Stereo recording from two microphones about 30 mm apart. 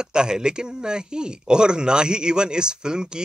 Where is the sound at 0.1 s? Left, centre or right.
Right.